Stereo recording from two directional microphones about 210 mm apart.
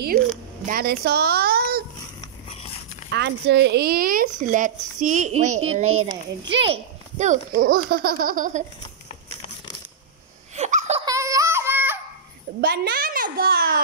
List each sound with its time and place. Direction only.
0.7 s speech: 45° right (ahead or behind)
3.1 s a child's voice: 55° right (ahead or behind)
10.5 s laughter: 35° right (ahead or behind)
11.1 s a sound: 15° right (ahead or behind)
12.5 s a child's voice: 50° right (ahead or behind)